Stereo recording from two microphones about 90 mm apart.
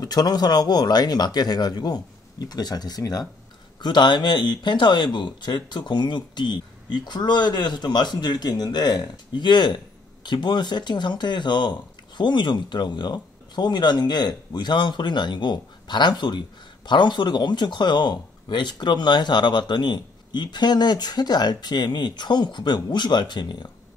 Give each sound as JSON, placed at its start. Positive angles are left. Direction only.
{"t": 0.0, "sound": "speech", "side_deg": 50}
{"t": 3.8, "sound": "speech", "side_deg": 55}